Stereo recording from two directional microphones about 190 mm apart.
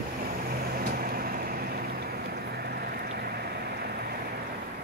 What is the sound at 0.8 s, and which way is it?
Vehicle, 50° right (ahead or behind).